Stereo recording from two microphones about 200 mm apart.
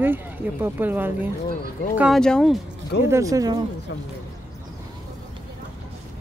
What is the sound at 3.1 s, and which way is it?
Speech, 15° right (ahead or behind).